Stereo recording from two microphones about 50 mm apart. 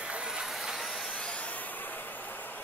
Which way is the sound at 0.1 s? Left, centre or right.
Centre.